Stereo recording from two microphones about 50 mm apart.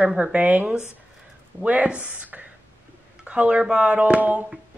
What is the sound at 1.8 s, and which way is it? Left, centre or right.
Speech, right.